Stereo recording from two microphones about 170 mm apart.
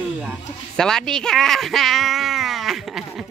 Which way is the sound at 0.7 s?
5° left (ahead or behind).